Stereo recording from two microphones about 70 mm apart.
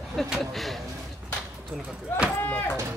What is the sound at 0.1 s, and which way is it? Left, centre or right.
Speech, centre.